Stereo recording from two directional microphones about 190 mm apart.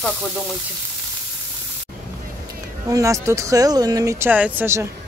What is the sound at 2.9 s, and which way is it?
Speech, 15° right (ahead or behind).